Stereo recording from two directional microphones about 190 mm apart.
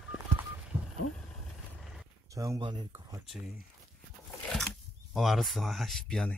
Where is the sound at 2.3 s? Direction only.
15° right (ahead or behind).